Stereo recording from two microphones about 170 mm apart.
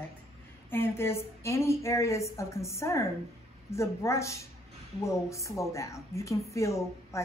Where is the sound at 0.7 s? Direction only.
15° left (ahead or behind).